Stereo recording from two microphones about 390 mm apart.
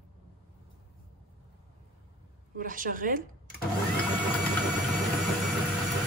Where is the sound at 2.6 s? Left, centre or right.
Right.